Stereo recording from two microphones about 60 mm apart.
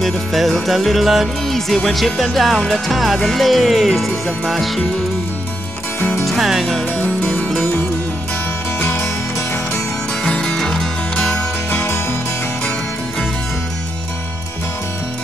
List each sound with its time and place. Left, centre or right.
0.0 s music: centre
5.9 s music: left
6.2 s music: centre
7.0 s music: left
8.8 s music: left
10.2 s music: centre
11.7 s music: left